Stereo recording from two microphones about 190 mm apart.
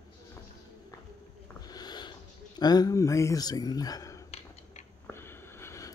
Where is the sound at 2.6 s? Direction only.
20° left (ahead or behind).